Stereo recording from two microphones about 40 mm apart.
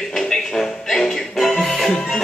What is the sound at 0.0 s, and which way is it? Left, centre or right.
Music, centre.